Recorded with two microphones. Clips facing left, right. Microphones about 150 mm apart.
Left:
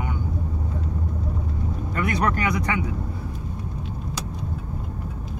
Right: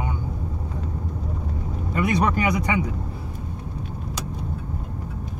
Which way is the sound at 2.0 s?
15° right (ahead or behind).